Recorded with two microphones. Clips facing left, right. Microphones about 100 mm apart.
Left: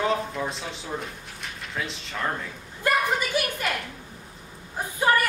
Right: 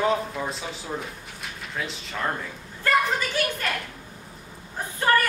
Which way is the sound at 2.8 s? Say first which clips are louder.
Right 1 dB; 15° left (ahead or behind).